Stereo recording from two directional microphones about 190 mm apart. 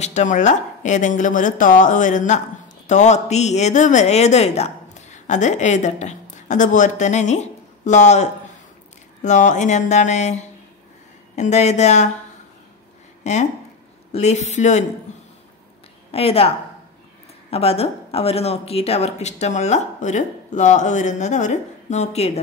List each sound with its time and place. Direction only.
0.0 s a woman's voice: 40° left (ahead or behind)
13.2 s speech: 35° left (ahead or behind)
16.1 s speech: 30° left (ahead or behind)